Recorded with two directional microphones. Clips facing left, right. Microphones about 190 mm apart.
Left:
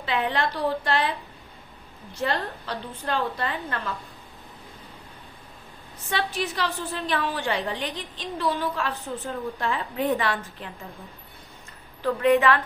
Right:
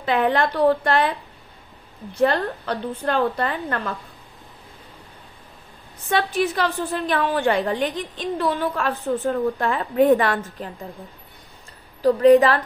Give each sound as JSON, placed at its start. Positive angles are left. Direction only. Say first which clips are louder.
{"t": 0.0, "sound": "a woman's voice", "louder": "right 6 dB", "side_deg": -50}
{"t": 2.2, "sound": "a woman's voice", "louder": "right 8 dB", "side_deg": -55}
{"t": 6.0, "sound": "a woman's voice", "louder": "right 7 dB", "side_deg": -50}
{"t": 12.0, "sound": "a woman's voice", "louder": "right 7 dB", "side_deg": -35}